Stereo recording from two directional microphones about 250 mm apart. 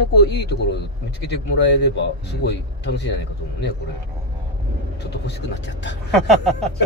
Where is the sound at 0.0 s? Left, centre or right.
Left.